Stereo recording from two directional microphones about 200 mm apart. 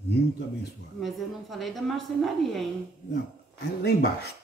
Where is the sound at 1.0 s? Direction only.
Centre (ahead or behind).